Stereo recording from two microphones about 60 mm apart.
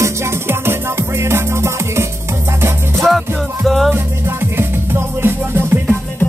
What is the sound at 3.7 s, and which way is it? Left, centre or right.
Music, centre.